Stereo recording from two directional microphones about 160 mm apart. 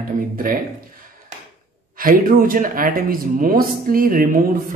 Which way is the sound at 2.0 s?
60° right (ahead or behind).